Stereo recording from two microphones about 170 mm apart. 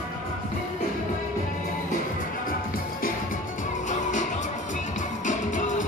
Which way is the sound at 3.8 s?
45° left (ahead or behind).